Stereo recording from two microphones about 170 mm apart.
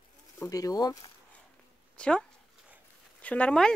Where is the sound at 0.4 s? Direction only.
20° left (ahead or behind).